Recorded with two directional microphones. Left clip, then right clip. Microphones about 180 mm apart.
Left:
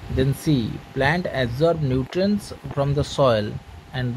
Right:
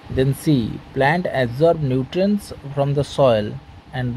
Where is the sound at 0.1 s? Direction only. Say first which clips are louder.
Right 3 dB; 15° right (ahead or behind).